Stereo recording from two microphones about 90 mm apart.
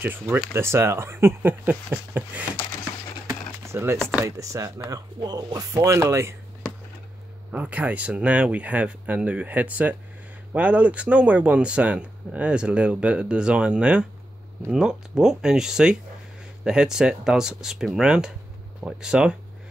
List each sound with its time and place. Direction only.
0.0 s speech: 20° right (ahead or behind)
3.6 s speech: 30° right (ahead or behind)
7.5 s speech: 15° right (ahead or behind)